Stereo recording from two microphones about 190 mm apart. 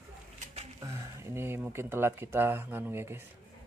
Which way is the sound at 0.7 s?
15° right (ahead or behind).